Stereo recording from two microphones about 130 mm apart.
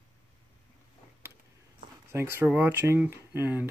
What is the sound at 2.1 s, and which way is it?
Speech, 20° right (ahead or behind).